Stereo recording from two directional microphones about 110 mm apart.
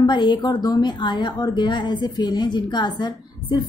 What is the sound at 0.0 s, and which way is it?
A woman's voice, 45° left (ahead or behind).